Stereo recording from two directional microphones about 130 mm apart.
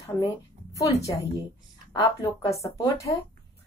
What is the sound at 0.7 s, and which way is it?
Speech, 25° left (ahead or behind).